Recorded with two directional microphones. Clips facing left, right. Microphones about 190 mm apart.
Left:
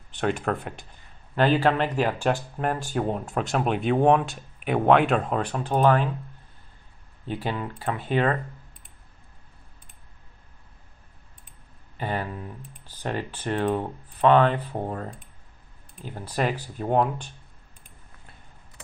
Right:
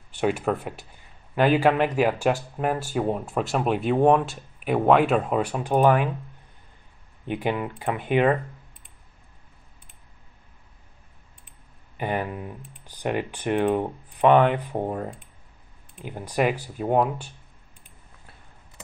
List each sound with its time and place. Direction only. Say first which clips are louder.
0.1 s speech: right 2 dB; 5° right (ahead or behind)
7.2 s speech: right 3 dB; 15° right (ahead or behind)
12.0 s speech: right 2 dB; 15° right (ahead or behind)